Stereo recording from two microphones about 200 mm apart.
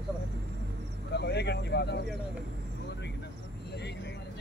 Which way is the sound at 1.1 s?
55° left (ahead or behind).